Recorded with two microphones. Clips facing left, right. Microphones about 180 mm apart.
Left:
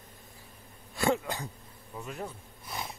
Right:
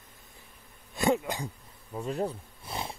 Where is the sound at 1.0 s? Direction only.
20° right (ahead or behind).